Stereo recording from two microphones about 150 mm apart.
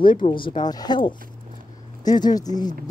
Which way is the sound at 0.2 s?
35° left (ahead or behind).